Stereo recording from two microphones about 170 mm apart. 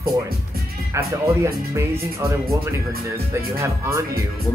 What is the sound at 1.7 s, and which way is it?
Speech, 20° right (ahead or behind).